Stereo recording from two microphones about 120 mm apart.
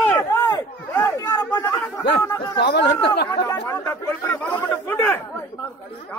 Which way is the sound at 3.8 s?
10° left (ahead or behind).